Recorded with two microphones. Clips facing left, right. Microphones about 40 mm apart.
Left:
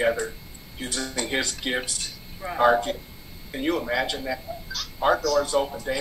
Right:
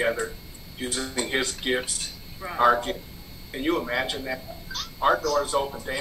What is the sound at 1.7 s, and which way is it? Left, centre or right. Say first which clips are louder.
Speech: right 1 dB; centre.